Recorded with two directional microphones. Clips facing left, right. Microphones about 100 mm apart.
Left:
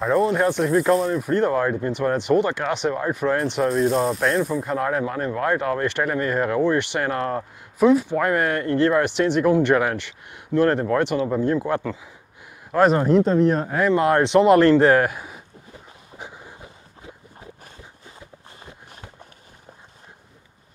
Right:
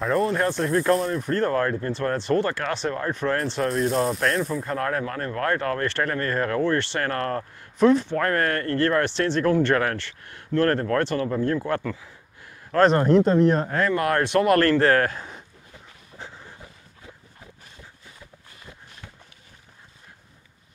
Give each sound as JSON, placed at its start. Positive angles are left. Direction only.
{"t": 0.0, "sound": "speech", "side_deg": 5}
{"t": 3.7, "sound": "speech", "side_deg": 0}
{"t": 4.6, "sound": "speech", "side_deg": 15}
{"t": 12.7, "sound": "speech", "side_deg": 5}
{"t": 13.7, "sound": "speech", "side_deg": 20}
{"t": 16.2, "sound": "a sound", "side_deg": 15}